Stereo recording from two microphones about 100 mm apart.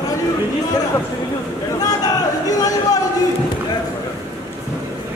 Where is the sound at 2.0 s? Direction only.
40° left (ahead or behind).